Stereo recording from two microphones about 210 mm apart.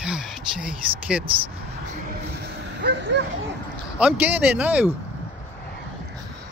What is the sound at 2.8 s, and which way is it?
Speech, 55° right (ahead or behind).